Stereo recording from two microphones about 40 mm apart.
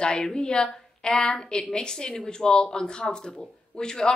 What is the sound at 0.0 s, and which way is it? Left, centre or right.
A woman's voice, centre.